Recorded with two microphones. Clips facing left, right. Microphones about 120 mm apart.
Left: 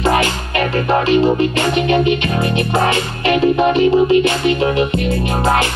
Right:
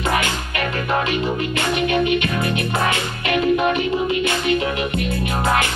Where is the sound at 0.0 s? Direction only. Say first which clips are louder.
Left 6 dB; 35° left (ahead or behind).